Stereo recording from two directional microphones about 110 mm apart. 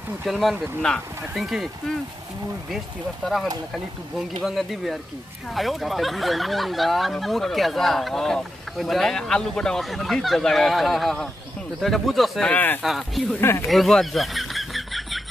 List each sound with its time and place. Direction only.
0.2 s speech: centre (ahead or behind)
4.4 s speech: centre (ahead or behind)
12.4 s speech: 15° left (ahead or behind)
12.8 s speech: centre (ahead or behind)
13.4 s speech: 25° left (ahead or behind)
13.7 s a sound: centre (ahead or behind)